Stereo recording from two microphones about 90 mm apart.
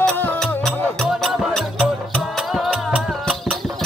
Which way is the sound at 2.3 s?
5° right (ahead or behind).